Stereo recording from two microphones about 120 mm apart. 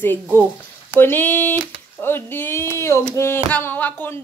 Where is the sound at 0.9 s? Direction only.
15° left (ahead or behind).